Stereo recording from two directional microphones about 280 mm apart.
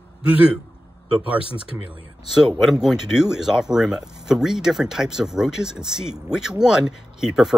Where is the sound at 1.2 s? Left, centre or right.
Centre.